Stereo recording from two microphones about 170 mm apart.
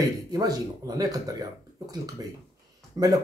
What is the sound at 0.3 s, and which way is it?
Speech, 20° right (ahead or behind).